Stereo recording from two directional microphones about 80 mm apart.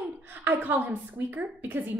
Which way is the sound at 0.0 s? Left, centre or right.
Right.